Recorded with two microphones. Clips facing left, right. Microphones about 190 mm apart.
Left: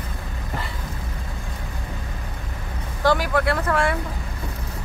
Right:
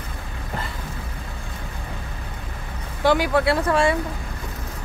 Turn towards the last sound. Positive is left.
turn(degrees=-20)  # may be behind; listen again after turning